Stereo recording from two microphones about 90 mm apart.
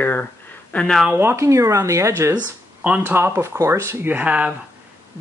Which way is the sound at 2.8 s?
20° right (ahead or behind).